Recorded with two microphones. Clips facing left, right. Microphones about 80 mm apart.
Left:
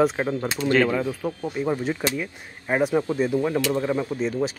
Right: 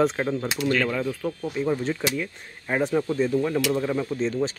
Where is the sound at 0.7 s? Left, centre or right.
Left.